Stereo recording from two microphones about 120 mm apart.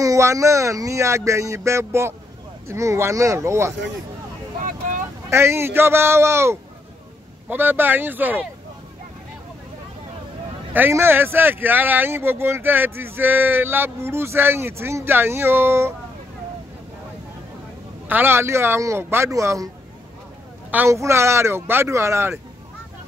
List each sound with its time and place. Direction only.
0.0 s speech: 25° right (ahead or behind)
4.6 s vehicle: 90° right
5.3 s speech: 20° right (ahead or behind)
10.7 s speech: 20° right (ahead or behind)
18.0 s speech: 15° right (ahead or behind)
20.7 s speech: 20° right (ahead or behind)